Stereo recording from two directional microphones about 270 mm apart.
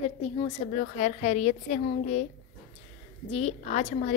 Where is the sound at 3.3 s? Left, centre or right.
Left.